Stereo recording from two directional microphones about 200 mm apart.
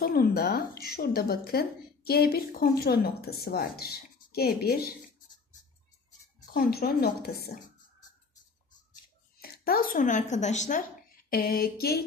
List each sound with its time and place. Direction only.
0.0 s a woman's voice: 50° left (ahead or behind)
6.5 s a woman's voice: 50° left (ahead or behind)
9.4 s a woman's voice: 50° left (ahead or behind)
11.2 s a woman's voice: 50° left (ahead or behind)